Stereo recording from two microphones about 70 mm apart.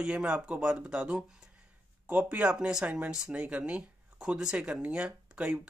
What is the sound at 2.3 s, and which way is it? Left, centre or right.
Speech, centre.